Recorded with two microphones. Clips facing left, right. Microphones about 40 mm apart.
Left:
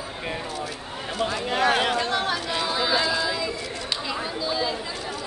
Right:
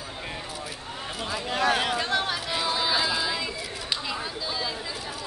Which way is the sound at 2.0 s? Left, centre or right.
Centre.